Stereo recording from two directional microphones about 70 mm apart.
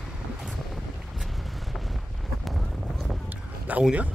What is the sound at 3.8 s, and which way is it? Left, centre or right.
Speech, centre.